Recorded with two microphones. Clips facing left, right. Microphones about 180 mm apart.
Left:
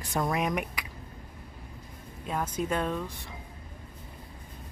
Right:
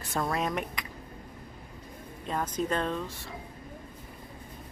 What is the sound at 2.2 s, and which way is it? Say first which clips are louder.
Speech: even; 10° left (ahead or behind).